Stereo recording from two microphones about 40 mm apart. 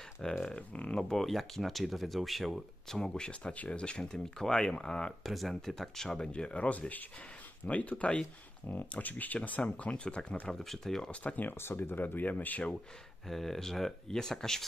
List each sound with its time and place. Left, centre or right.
0.2 s speech: centre
1.1 s speech: centre
2.9 s speech: centre
3.5 s speech: left
4.1 s speech: centre
4.7 s speech: left
5.2 s speech: centre
6.3 s speech: left
10.5 s speech: centre
11.1 s speech: left
11.5 s speech: left
12.2 s speech: left
13.3 s speech: centre